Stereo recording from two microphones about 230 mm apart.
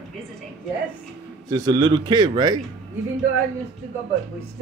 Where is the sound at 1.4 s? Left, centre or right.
Centre.